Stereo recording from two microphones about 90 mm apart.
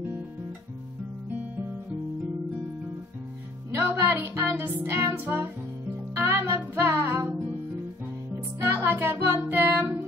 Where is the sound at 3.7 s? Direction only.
30° right (ahead or behind).